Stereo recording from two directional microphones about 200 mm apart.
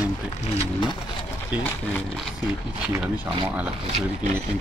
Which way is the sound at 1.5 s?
10° right (ahead or behind).